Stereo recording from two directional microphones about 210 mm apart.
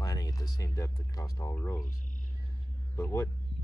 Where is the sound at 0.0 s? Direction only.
15° left (ahead or behind).